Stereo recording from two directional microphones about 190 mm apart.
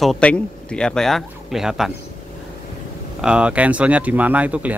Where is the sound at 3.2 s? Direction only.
5° right (ahead or behind).